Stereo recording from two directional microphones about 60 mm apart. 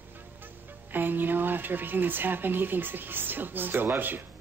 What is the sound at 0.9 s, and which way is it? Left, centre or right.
Speech, right.